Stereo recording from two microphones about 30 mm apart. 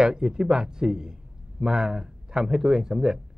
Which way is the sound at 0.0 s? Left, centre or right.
Right.